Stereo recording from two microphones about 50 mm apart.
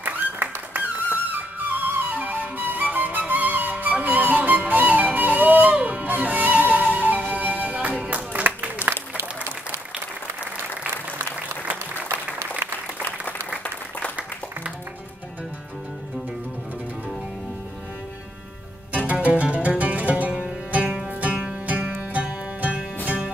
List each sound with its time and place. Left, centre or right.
0.0 s a sound: right
1.3 s flute: right
8.1 s music: right
8.9 s applause: right
18.9 s music: right